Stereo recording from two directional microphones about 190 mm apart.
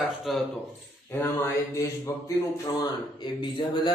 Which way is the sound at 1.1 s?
15° left (ahead or behind).